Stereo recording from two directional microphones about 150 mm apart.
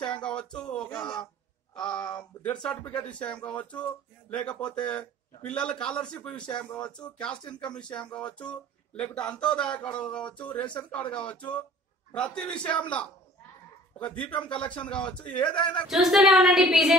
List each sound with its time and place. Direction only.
0.1 s speech: 5° left (ahead or behind)
2.0 s speech: 30° left (ahead or behind)
2.4 s a woman's voice: 10° left (ahead or behind)